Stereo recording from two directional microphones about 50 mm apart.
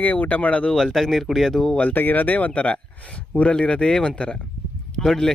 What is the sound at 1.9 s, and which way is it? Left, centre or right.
Speech, left.